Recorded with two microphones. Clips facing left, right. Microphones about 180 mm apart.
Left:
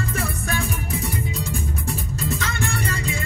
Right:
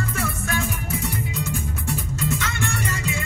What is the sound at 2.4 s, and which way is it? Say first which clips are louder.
Music: left 1 dB; 35° left (ahead or behind).